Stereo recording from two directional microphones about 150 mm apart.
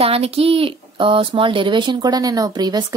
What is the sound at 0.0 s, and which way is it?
Speech, 40° right (ahead or behind).